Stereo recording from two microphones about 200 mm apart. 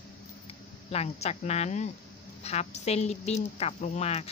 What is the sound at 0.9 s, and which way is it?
A woman's voice, 30° left (ahead or behind).